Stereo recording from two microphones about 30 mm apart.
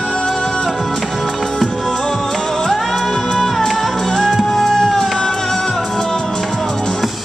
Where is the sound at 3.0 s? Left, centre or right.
Left.